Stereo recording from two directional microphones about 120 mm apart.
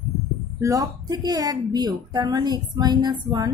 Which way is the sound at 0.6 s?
30° right (ahead or behind).